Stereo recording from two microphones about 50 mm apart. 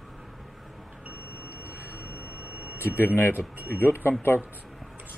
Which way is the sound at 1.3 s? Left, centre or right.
Right.